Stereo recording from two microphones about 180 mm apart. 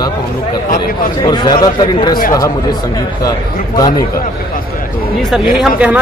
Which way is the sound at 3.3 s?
20° left (ahead or behind).